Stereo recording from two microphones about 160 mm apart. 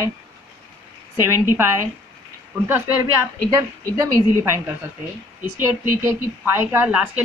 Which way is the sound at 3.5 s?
20° right (ahead or behind).